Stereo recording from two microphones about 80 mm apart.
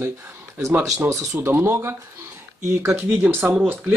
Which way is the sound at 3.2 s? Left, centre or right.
Right.